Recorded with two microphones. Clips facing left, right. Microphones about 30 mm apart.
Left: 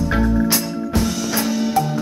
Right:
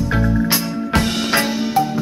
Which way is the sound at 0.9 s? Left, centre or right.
Right.